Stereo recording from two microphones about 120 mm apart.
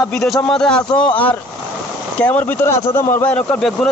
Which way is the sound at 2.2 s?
15° left (ahead or behind).